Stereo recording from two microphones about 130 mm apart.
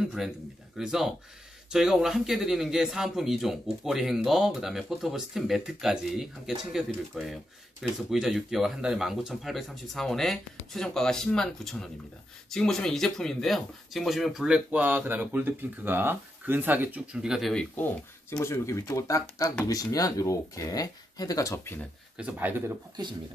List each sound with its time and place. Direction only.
0.0 s a man's voice: 5° right (ahead or behind)
18.3 s speech: 20° left (ahead or behind)
22.1 s speech: 10° right (ahead or behind)